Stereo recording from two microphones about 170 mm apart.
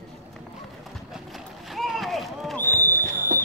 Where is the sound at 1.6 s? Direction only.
Centre (ahead or behind).